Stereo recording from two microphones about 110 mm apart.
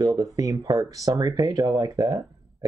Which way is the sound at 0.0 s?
35° right (ahead or behind).